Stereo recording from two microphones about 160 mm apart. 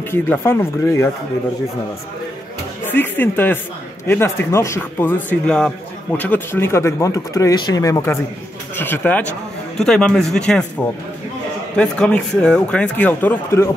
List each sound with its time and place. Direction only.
0.1 s speech: 15° left (ahead or behind)
2.8 s speech: 10° left (ahead or behind)